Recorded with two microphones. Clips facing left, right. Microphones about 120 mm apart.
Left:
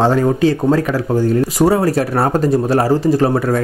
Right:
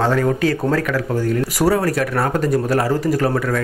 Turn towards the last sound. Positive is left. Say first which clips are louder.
# left 4 dB
turn(degrees=30)  # may be behind; listen again after turning